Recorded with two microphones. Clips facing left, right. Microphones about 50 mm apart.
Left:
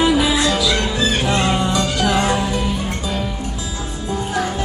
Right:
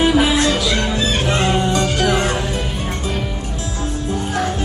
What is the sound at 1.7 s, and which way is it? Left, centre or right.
Music, right.